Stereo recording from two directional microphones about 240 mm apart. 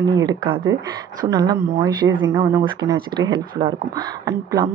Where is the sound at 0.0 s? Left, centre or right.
Centre.